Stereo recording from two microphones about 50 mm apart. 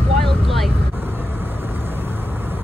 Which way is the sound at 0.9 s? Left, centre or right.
Right.